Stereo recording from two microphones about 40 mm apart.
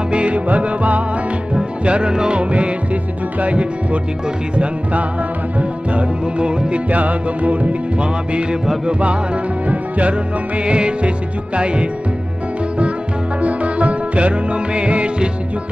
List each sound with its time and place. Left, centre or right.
0.1 s music: right
1.5 s music: right
5.6 s music: right
6.9 s music: right
13.4 s music: right